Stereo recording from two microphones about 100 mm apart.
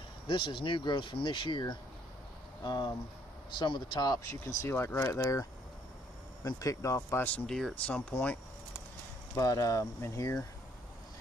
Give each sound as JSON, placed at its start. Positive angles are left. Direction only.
{"t": 0.3, "sound": "speech", "side_deg": 60}
{"t": 7.4, "sound": "speech", "side_deg": 5}
{"t": 7.7, "sound": "speech", "side_deg": 15}
{"t": 9.3, "sound": "speech", "side_deg": 35}